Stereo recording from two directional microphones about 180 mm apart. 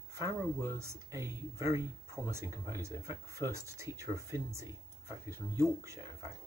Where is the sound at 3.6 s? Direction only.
15° right (ahead or behind).